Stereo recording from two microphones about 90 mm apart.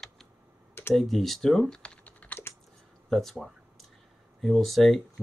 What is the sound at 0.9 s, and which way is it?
Speech, centre (ahead or behind).